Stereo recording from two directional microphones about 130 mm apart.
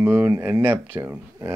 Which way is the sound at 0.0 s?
15° right (ahead or behind).